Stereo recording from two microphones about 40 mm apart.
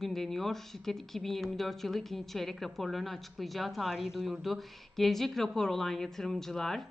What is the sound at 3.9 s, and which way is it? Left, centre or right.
A woman's voice, centre.